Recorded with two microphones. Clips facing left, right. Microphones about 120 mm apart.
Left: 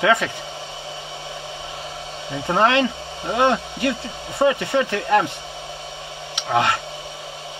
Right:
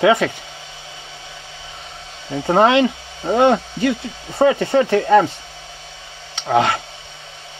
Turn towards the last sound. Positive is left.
turn(degrees=-25)  # may be behind; listen again after turning